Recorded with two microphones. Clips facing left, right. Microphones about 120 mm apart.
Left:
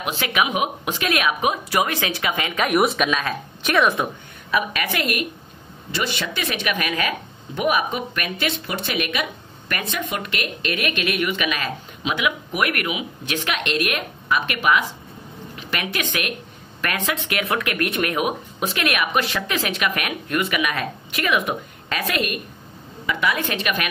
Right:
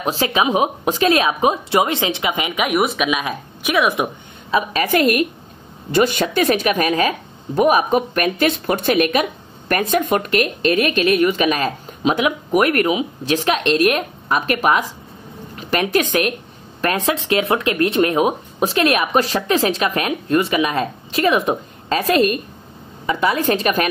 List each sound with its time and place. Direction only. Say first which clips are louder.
0.0 s a woman's voice: right 4 dB; 35° right (ahead or behind); by 2.6 s 15° right (ahead or behind)
2.6 s speech: even; centre (ahead or behind)
3.1 s speech: right 2 dB; 10° right (ahead or behind)
4.5 s a woman's voice: right 4 dB; 30° right (ahead or behind)
4.8 s a woman's voice: right 9 dB; 45° right (ahead or behind)